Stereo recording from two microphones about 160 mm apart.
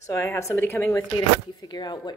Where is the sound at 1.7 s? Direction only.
25° left (ahead or behind).